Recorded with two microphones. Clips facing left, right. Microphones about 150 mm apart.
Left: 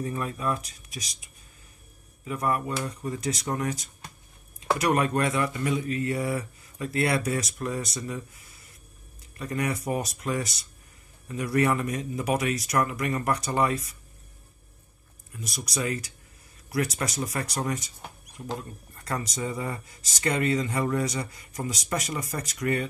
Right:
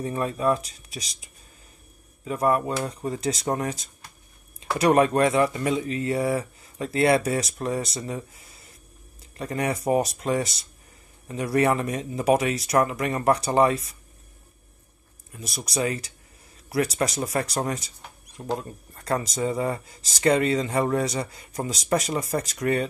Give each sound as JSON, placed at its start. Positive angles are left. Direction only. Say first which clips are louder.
{"t": 0.2, "sound": "speech", "louder": "right 6 dB", "side_deg": -30}
{"t": 2.2, "sound": "speech", "louder": "right 5 dB", "side_deg": -30}
{"t": 9.4, "sound": "speech", "louder": "right 3 dB", "side_deg": -30}
{"t": 15.4, "sound": "speech", "louder": "right 4 dB", "side_deg": -25}
{"t": 18.4, "sound": "speech", "louder": "right 6 dB", "side_deg": -45}
{"t": 19.0, "sound": "speech", "louder": "right 6 dB", "side_deg": -30}